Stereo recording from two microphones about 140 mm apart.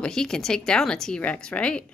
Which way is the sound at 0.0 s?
5° left (ahead or behind).